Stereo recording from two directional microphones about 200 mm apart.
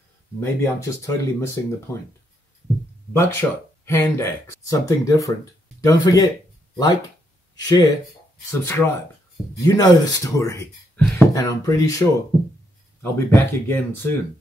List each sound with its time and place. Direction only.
0.4 s speech: 15° left (ahead or behind)
3.1 s speech: 10° left (ahead or behind)
7.5 s speech: 20° left (ahead or behind)